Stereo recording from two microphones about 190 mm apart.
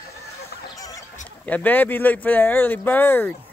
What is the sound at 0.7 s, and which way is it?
Fowl, 20° left (ahead or behind).